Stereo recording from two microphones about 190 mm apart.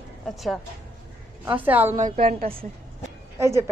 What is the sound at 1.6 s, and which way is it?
Speech, 10° right (ahead or behind).